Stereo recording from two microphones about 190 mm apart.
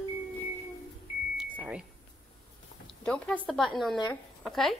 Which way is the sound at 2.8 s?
5° left (ahead or behind).